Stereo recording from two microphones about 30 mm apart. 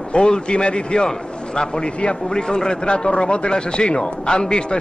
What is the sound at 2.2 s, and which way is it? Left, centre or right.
A man's voice, left.